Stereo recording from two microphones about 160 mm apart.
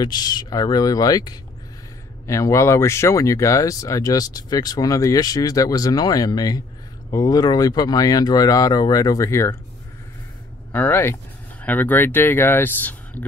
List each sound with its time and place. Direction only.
0.0 s speech: 25° left (ahead or behind)
10.7 s speech: 10° left (ahead or behind)